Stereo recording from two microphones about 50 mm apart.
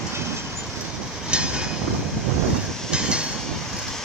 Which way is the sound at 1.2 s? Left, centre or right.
Centre.